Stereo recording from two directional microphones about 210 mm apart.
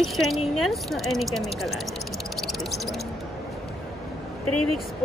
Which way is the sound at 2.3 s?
Centre (ahead or behind).